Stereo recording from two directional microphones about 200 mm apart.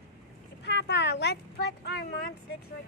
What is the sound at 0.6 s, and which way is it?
Speech, 55° left (ahead or behind).